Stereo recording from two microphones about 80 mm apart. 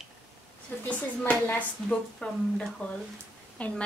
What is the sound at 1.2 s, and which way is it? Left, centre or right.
Speech, left.